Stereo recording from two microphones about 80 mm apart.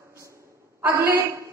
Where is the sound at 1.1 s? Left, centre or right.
Right.